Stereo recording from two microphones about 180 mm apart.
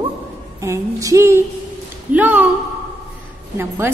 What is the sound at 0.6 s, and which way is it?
A woman's voice, 15° right (ahead or behind).